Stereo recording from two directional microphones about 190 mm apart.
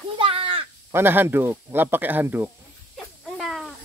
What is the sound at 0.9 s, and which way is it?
Speech, 10° right (ahead or behind).